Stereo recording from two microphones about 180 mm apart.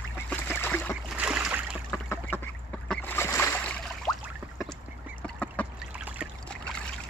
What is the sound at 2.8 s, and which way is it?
Boat, 10° left (ahead or behind).